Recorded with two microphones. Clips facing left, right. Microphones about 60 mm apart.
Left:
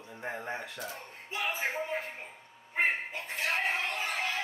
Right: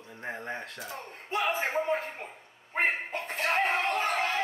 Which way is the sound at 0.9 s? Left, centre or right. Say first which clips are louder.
Right 4 dB; right.